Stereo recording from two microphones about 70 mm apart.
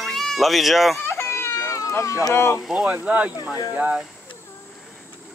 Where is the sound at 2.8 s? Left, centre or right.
Centre.